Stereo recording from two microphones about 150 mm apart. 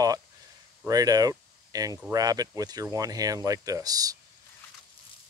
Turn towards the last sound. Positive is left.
turn(degrees=-25)  # may be behind; listen again after turning